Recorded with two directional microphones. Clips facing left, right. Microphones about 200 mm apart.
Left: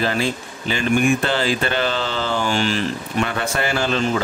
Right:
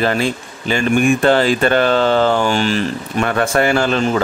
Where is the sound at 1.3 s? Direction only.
55° right (ahead or behind).